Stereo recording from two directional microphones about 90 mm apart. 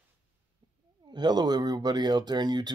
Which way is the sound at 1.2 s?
50° right (ahead or behind).